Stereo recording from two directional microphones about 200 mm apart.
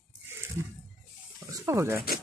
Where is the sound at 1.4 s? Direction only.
15° right (ahead or behind).